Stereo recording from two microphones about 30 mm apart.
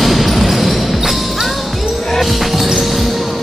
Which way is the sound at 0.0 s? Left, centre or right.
Centre.